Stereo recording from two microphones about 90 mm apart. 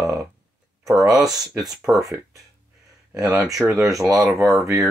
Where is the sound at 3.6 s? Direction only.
5° right (ahead or behind).